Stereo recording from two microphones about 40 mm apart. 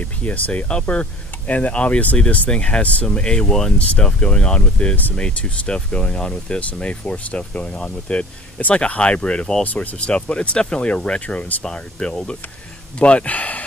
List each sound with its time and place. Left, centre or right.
0.2 s speech: left
0.7 s speech: left
2.5 s speech: left